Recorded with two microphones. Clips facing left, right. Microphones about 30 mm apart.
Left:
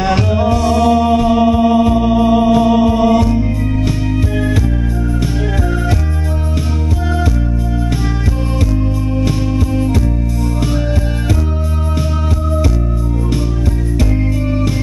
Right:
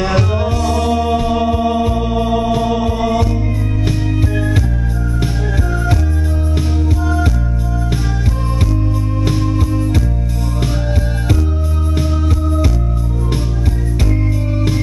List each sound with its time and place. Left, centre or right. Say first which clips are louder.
0.5 s music: left 4 dB; left
0.8 s music: left 5 dB; centre